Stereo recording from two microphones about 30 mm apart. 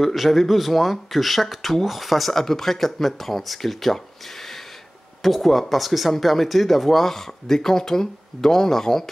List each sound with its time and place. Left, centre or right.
0.0 s speech: centre
2.3 s speech: centre
5.2 s speech: centre